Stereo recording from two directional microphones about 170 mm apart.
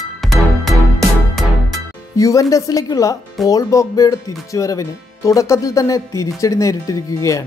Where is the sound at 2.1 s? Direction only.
20° left (ahead or behind).